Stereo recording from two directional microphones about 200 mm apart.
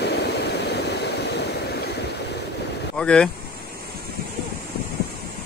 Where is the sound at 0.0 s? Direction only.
55° left (ahead or behind).